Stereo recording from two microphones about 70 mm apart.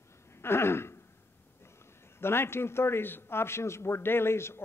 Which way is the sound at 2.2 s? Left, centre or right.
Left.